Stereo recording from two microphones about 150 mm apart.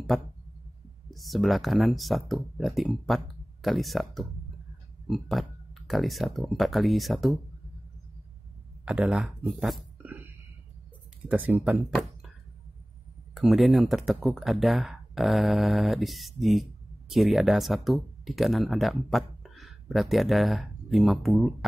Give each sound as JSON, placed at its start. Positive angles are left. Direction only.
{"t": 0.1, "sound": "speech", "side_deg": 0}
{"t": 8.8, "sound": "speech", "side_deg": -10}
{"t": 11.2, "sound": "speech", "side_deg": -10}
{"t": 13.3, "sound": "speech", "side_deg": 0}